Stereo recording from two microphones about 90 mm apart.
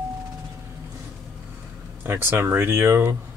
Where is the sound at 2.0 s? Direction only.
20° right (ahead or behind).